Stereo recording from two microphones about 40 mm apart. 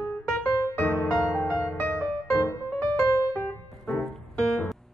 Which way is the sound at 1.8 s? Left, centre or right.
Left.